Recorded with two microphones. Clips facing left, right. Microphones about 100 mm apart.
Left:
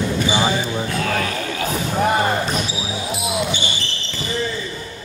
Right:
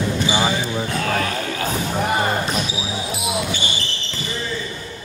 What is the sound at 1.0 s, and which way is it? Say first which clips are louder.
Speech: even; 35° right (ahead or behind).